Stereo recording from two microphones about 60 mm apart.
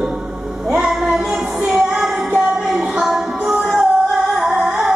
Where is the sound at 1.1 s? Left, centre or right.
Centre.